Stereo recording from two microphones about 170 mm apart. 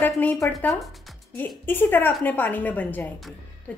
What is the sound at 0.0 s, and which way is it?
Speech, 10° left (ahead or behind).